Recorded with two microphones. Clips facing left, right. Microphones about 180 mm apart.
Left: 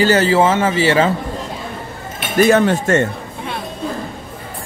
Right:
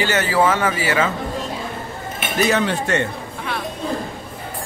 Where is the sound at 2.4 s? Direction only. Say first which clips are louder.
Left 6 dB; 45° left (ahead or behind).